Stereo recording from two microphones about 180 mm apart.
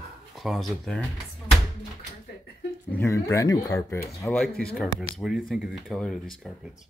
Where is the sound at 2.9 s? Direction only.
15° left (ahead or behind).